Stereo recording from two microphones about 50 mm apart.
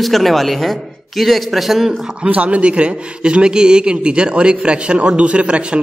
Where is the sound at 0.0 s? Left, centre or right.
Centre.